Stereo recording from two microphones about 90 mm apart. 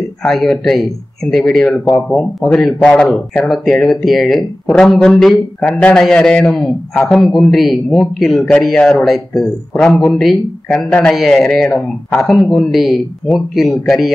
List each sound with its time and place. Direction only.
0.2 s a man's voice: 5° left (ahead or behind)